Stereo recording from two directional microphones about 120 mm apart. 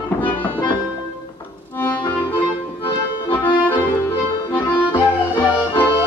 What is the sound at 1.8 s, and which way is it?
Accordion, 20° left (ahead or behind).